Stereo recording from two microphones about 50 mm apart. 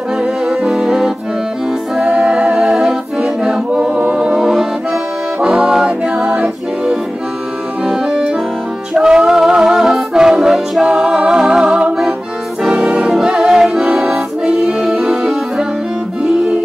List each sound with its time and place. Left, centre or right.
0.2 s music: centre
2.0 s a capella: centre
5.4 s music: centre
7.8 s accordion: centre
9.2 s music: centre
13.8 s accordion: right